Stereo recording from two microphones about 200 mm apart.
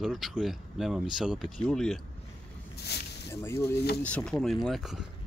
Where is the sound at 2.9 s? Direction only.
55° left (ahead or behind).